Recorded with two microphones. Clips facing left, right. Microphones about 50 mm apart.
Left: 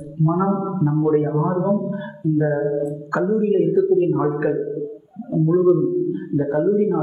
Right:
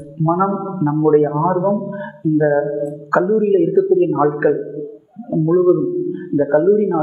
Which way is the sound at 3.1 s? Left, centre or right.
Centre.